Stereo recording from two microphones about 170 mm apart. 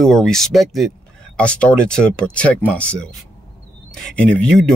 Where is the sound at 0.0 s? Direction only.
5° left (ahead or behind).